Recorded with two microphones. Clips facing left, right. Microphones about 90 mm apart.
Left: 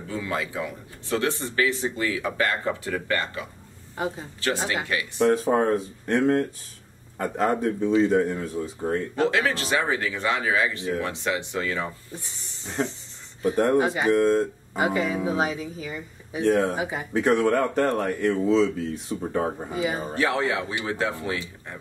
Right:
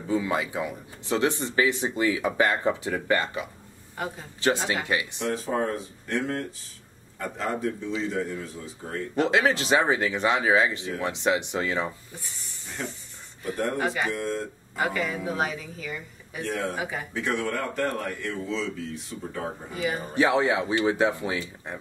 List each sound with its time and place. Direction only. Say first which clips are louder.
0.1 s speech: right 3 dB; 20° right (ahead or behind)
3.9 s a man's voice: left 4 dB; 20° left (ahead or behind)
4.8 s speech: right 1 dB; 20° right (ahead or behind)
5.3 s speech: left 4 dB; 45° left (ahead or behind)
9.3 s speech: right 2 dB; 20° right (ahead or behind)
12.1 s speech: left 3 dB; 20° left (ahead or behind)
14.1 s speech: left 10 dB; 45° left (ahead or behind)
14.8 s speech: left 4 dB; 20° left (ahead or behind)
17.1 s speech: left 10 dB; 45° left (ahead or behind)
19.1 s speech: left 9 dB; 30° left (ahead or behind)
20.2 s speech: right 3 dB; 20° right (ahead or behind)